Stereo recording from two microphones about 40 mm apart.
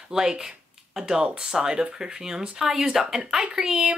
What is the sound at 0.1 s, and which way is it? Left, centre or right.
Speech, centre.